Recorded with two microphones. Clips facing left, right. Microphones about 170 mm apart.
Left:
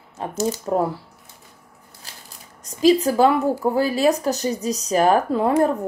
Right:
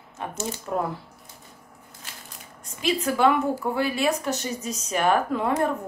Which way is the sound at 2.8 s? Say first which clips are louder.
Left 6 dB; 35° left (ahead or behind).